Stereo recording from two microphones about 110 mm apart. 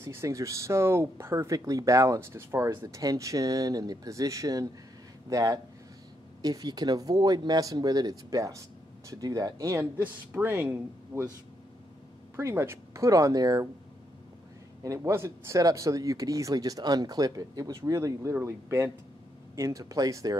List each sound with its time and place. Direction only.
0.0 s speech: 25° right (ahead or behind)
12.4 s speech: 25° right (ahead or behind)
14.8 s speech: 30° right (ahead or behind)